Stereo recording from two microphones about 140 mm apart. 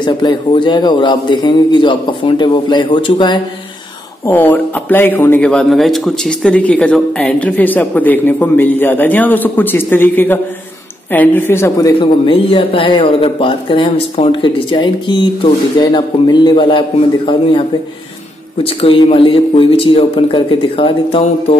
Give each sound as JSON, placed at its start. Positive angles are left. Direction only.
{"t": 0.0, "sound": "a man's voice", "side_deg": 35}
{"t": 4.3, "sound": "speech", "side_deg": 15}
{"t": 12.0, "sound": "a man's voice", "side_deg": 40}
{"t": 18.6, "sound": "a man's voice", "side_deg": 40}